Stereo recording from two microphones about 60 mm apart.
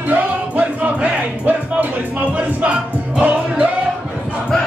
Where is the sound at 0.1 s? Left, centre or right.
Right.